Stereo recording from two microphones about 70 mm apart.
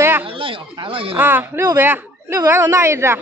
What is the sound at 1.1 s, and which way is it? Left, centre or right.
A woman's voice, right.